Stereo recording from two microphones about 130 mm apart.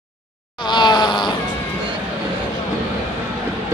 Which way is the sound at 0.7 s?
35° left (ahead or behind).